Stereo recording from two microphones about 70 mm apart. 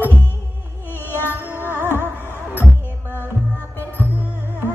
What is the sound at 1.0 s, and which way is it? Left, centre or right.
Music, left.